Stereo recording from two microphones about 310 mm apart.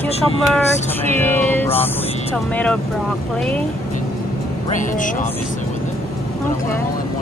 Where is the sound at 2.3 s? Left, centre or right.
Centre.